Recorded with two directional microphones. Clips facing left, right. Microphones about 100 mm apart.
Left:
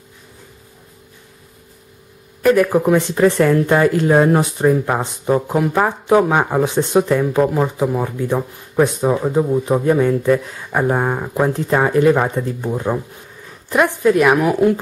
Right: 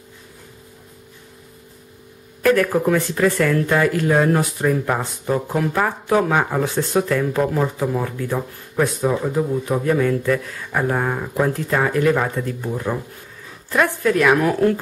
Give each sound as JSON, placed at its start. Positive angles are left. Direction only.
{"t": 2.4, "sound": "speech", "side_deg": 15}